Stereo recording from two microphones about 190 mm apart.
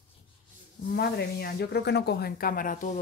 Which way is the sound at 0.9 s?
55° left (ahead or behind).